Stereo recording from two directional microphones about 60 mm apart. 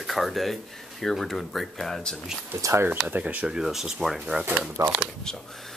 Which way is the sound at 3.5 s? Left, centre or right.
Centre.